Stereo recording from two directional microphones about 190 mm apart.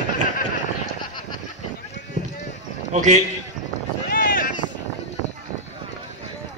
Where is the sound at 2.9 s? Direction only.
40° right (ahead or behind).